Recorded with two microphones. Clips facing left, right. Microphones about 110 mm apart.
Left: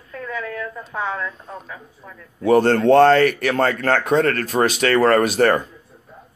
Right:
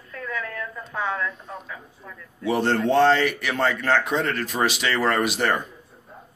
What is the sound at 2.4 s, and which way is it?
Speech, 50° left (ahead or behind).